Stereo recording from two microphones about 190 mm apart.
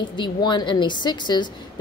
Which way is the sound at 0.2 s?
25° left (ahead or behind).